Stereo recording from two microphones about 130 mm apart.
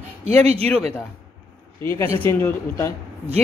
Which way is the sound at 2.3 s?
20° left (ahead or behind).